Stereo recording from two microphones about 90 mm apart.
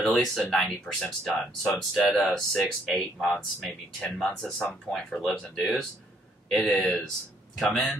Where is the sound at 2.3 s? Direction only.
5° left (ahead or behind).